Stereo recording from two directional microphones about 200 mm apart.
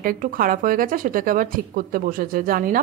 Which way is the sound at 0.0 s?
45° right (ahead or behind).